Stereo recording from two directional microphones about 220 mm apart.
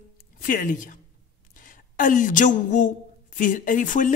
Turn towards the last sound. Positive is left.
turn(degrees=35)  # may be behind; listen again after turning